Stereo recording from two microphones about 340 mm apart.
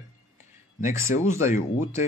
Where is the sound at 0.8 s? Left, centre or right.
Centre.